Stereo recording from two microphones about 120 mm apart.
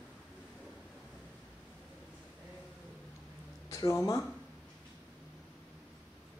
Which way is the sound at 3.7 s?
25° left (ahead or behind).